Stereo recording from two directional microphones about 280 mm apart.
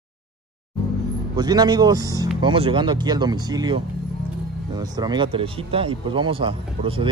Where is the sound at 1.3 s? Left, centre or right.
Centre.